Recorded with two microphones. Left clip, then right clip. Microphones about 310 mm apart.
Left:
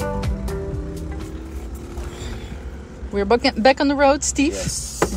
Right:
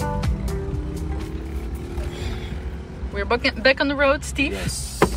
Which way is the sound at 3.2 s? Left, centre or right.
Centre.